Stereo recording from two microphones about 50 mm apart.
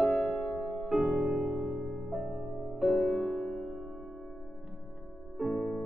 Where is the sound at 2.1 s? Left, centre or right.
Centre.